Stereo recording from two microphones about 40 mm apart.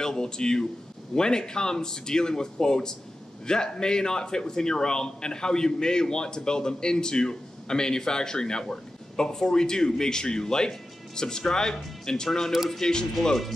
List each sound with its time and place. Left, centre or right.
0.0 s a man's voice: centre